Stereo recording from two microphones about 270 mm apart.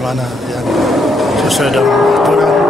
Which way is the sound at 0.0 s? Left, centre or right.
Centre.